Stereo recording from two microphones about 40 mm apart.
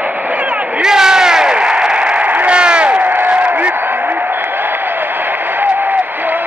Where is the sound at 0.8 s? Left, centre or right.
Centre; by 3.7 s right.